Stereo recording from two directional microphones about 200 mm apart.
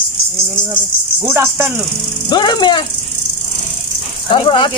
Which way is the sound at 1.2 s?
10° right (ahead or behind).